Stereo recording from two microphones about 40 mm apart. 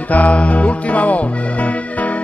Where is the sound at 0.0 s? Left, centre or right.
Left.